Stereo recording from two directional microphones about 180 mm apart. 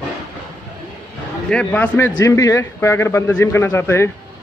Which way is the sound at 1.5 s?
5° left (ahead or behind).